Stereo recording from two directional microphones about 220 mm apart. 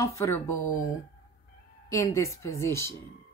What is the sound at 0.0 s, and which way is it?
Speech, 15° left (ahead or behind).